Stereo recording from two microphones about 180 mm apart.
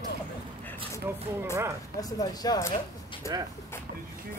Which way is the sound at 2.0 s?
20° left (ahead or behind).